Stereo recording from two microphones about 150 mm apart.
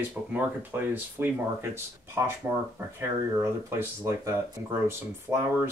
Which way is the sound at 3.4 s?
15° right (ahead or behind).